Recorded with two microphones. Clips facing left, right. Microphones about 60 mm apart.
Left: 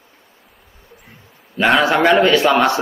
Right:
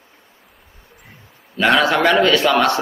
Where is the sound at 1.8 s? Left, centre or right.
Centre.